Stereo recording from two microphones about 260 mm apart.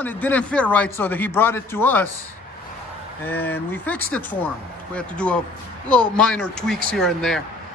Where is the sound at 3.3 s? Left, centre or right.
Centre.